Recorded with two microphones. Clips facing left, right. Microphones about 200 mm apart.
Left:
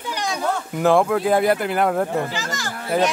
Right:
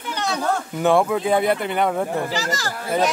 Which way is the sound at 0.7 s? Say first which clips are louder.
Left 2 dB; centre (ahead or behind).